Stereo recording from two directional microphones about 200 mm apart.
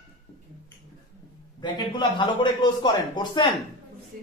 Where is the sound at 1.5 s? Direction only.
20° left (ahead or behind).